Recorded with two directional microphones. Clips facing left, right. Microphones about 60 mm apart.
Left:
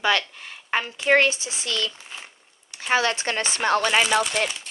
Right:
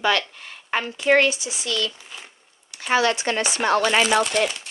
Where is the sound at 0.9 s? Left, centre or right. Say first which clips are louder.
Right 1 dB; left.